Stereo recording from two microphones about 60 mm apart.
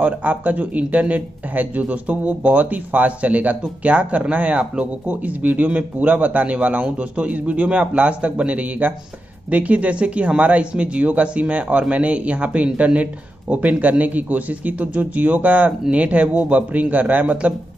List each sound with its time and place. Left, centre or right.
0.0 s speech: right